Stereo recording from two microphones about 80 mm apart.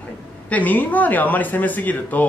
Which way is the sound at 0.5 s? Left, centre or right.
Left.